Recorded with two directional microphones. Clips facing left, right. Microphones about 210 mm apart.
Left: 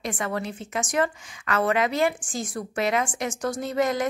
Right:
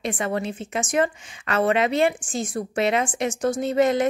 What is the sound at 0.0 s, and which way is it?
A woman's voice, 25° right (ahead or behind).